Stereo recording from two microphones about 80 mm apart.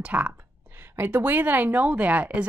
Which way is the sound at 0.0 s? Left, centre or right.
Centre.